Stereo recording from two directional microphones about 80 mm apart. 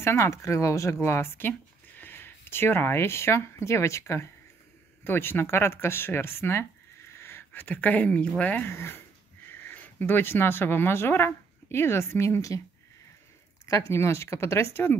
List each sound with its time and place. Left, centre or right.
0.0 s speech: left; by 8.6 s centre
8.6 s speech: left
12.4 s speech: left
13.7 s speech: left